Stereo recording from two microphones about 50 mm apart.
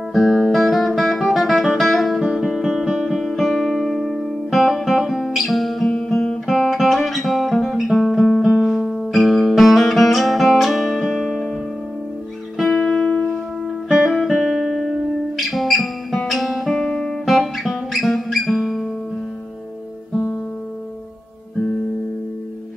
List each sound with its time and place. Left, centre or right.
0.1 s music: centre
0.5 s guitar: centre
3.0 s music: centre
6.4 s guitar: centre
7.5 s music: centre
12.6 s music: centre
13.8 s music: centre